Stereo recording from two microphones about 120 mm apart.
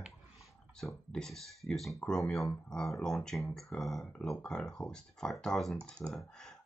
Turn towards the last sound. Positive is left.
turn(degrees=5)  # may be behind; listen again after turning